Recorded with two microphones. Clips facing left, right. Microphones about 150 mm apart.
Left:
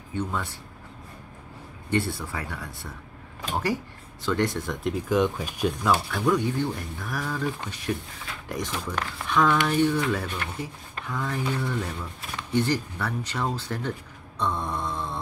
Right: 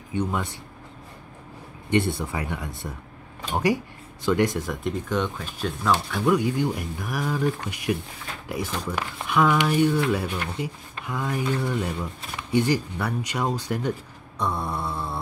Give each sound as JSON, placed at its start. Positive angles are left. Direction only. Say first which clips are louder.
{"t": 0.1, "sound": "speech", "louder": "right 3 dB", "side_deg": -15}
{"t": 1.9, "sound": "speech", "louder": "right 4 dB", "side_deg": -20}
{"t": 4.8, "sound": "speech", "louder": "left 4 dB", "side_deg": 5}
{"t": 6.1, "sound": "speech", "louder": "right 2 dB", "side_deg": -10}